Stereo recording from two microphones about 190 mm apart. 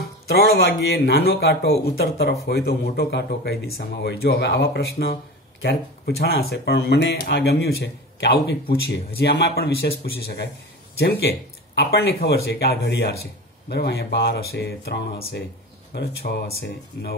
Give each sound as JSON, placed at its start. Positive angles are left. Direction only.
{"t": 0.3, "sound": "a man's voice", "side_deg": 60}